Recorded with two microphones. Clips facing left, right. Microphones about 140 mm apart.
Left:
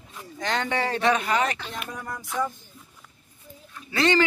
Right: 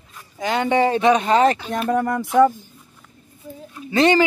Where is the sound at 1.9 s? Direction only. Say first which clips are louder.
Right 16 dB; 60° right (ahead or behind).